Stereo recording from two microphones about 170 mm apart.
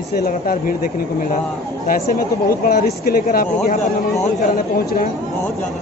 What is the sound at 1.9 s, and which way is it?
Speech, 60° left (ahead or behind).